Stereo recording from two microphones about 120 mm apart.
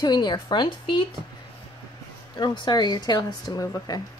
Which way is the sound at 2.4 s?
35° left (ahead or behind).